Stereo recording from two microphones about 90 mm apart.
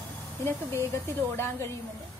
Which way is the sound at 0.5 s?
30° left (ahead or behind).